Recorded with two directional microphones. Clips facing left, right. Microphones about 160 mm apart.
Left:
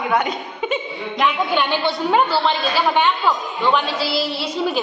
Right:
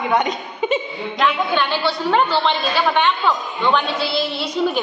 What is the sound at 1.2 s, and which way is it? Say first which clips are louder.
A woman's voice: even; 15° left (ahead or behind).